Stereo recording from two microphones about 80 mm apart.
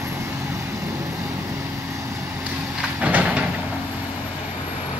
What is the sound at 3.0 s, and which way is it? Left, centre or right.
Train, centre.